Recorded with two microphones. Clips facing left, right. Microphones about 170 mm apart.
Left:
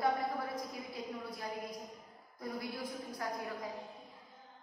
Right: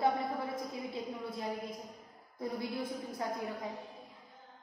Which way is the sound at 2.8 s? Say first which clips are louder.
Right 3 dB; 25° right (ahead or behind).